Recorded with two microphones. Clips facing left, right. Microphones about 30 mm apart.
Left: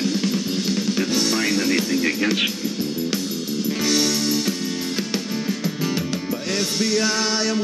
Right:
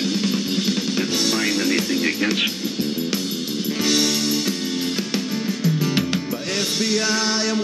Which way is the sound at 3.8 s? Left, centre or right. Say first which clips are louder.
Right 1 dB; centre.